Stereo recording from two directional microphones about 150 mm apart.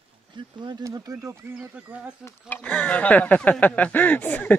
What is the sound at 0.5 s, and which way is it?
Speech, 25° right (ahead or behind).